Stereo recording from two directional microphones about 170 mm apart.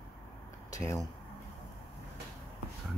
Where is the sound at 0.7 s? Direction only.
20° left (ahead or behind).